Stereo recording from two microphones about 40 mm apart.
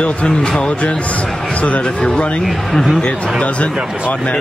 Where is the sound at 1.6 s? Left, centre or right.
Left.